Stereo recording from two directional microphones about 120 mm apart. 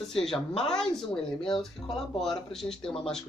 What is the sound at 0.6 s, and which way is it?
Speech, 5° left (ahead or behind).